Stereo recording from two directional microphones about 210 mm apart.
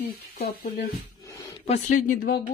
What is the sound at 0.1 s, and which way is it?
Speech, 45° left (ahead or behind).